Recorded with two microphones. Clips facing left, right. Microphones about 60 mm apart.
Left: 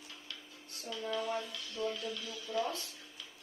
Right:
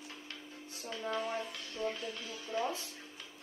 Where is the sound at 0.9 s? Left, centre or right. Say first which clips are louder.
Even; right.